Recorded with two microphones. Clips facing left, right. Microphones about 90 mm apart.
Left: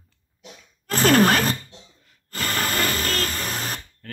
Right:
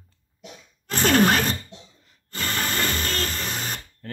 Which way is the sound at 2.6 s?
5° left (ahead or behind).